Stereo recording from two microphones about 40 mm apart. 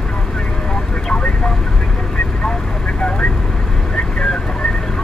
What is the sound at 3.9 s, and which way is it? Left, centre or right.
Vehicle, centre.